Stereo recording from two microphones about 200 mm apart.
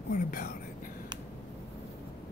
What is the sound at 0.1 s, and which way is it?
Whispering, 45° left (ahead or behind).